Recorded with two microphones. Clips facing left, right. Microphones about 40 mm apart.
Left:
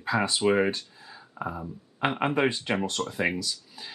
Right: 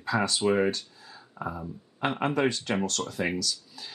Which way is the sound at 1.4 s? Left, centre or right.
Centre.